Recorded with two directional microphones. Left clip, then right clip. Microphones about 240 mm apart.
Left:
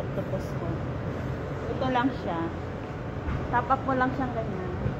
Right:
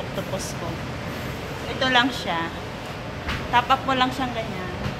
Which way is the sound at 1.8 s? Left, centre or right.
Right.